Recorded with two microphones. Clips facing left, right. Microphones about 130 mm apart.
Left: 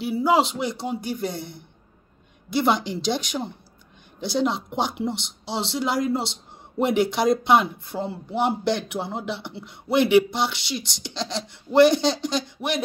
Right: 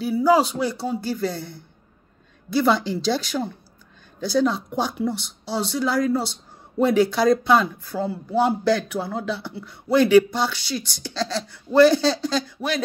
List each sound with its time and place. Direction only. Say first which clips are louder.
0.0 s speech: right 2 dB; 25° left (ahead or behind)